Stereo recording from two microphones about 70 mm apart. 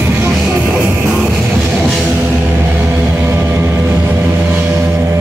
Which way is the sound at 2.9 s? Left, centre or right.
Right.